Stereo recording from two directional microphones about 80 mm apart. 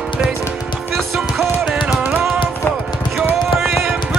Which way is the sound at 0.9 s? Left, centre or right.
Centre.